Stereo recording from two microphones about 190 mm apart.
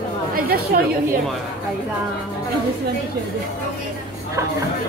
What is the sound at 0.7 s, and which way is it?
Speech, 50° right (ahead or behind).